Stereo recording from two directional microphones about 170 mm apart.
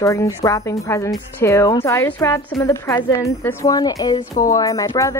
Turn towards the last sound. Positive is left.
turn(degrees=20)  # may be behind; listen again after turning